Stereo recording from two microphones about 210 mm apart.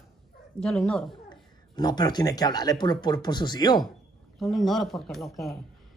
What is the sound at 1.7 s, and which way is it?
Speech, 20° left (ahead or behind).